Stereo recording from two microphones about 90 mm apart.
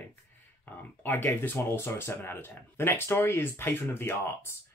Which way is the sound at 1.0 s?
20° left (ahead or behind).